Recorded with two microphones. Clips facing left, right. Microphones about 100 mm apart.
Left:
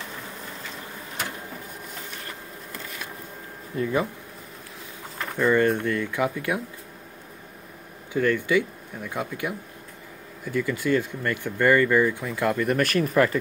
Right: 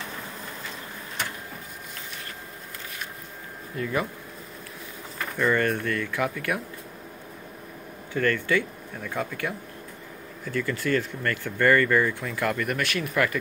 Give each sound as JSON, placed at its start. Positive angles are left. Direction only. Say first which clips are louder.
{"t": 3.7, "sound": "speech", "louder": "left 3 dB", "side_deg": 25}
{"t": 5.4, "sound": "speech", "louder": "left 3 dB", "side_deg": 20}
{"t": 8.1, "sound": "speech", "louder": "left 2 dB", "side_deg": 15}
{"t": 12.7, "sound": "speech", "louder": "left 5 dB", "side_deg": 40}